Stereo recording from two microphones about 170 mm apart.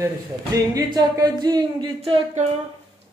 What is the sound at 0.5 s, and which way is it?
Music, 20° right (ahead or behind).